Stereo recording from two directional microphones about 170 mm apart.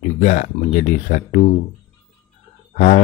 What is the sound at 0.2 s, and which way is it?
Speech, 45° left (ahead or behind).